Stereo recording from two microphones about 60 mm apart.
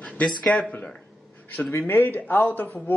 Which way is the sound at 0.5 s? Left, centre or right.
Left.